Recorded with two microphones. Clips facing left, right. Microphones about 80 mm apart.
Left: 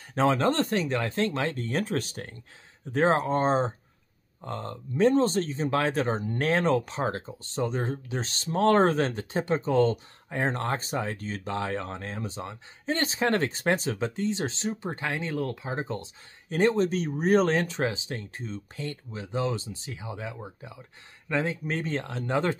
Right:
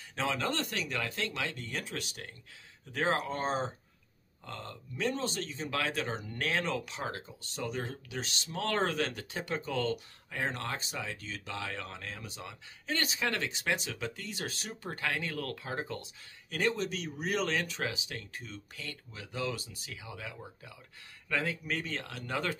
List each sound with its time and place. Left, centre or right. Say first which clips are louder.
0.1 s speech: left 9 dB; left